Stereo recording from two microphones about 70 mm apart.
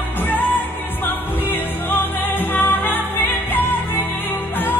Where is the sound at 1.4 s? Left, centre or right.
Left.